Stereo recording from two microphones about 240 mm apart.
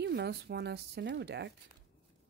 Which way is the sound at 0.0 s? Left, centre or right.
Right.